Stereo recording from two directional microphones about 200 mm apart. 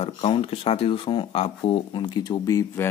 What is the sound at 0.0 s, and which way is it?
Speech, 30° left (ahead or behind).